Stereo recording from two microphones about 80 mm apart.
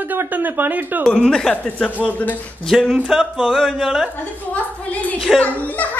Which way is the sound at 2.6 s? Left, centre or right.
Centre.